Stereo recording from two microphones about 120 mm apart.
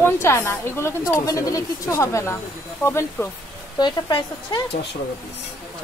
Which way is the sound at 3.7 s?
40° left (ahead or behind).